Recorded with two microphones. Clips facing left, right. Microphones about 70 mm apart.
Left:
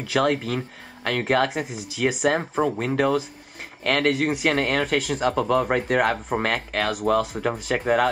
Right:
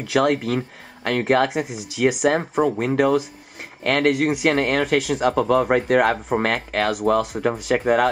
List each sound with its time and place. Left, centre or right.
0.1 s speech: centre
6.7 s speech: centre
7.0 s speech: centre